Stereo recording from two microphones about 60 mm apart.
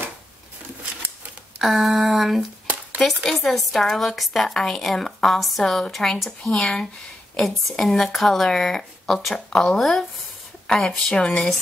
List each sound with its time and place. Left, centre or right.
1.6 s a woman's voice: centre
2.6 s a sound: right
3.3 s a woman's voice: centre
11.1 s a woman's voice: centre